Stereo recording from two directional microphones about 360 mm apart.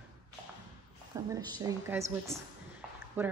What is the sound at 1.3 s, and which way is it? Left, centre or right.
A woman's voice, centre.